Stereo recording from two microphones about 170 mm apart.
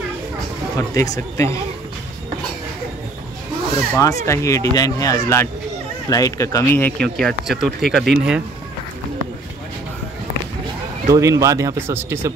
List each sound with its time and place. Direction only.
0.7 s speech: 20° left (ahead or behind)
4.0 s speech: 20° left (ahead or behind); by 8.4 s 5° right (ahead or behind)
11.1 s speech: 20° right (ahead or behind)